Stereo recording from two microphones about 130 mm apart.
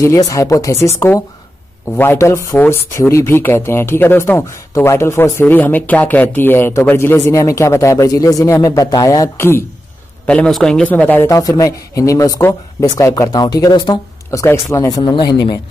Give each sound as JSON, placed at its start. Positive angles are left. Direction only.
{"t": 0.0, "sound": "speech", "side_deg": 25}
{"t": 10.2, "sound": "speech", "side_deg": 5}
{"t": 11.2, "sound": "speech", "side_deg": 25}
{"t": 14.4, "sound": "speech", "side_deg": 20}
{"t": 14.9, "sound": "speech", "side_deg": 35}